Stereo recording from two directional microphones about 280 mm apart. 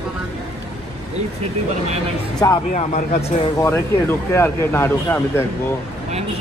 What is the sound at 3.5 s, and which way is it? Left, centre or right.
Speech, centre.